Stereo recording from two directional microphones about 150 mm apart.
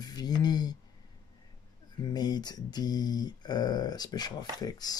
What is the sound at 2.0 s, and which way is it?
Speech, 25° left (ahead or behind).